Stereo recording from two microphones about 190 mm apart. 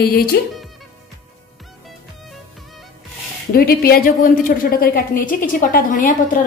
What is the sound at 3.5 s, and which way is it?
A woman's voice, 50° left (ahead or behind).